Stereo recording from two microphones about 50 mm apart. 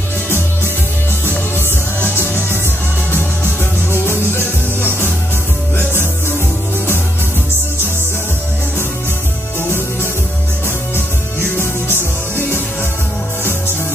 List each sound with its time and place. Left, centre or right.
2.0 s music: left
3.9 s music: left
11.9 s music: left